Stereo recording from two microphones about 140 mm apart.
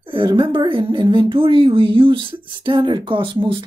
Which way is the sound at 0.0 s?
40° right (ahead or behind).